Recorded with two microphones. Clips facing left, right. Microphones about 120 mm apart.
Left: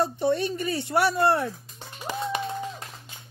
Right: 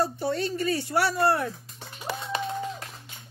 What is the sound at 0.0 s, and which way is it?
Speech, 20° left (ahead or behind).